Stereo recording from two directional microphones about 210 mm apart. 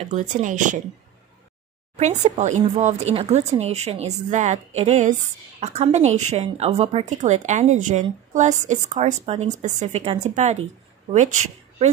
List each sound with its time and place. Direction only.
0.1 s a woman's voice: 35° right (ahead or behind)
2.0 s a woman's voice: 35° right (ahead or behind)